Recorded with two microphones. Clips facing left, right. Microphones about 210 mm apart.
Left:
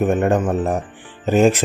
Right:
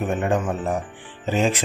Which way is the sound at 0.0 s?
45° left (ahead or behind).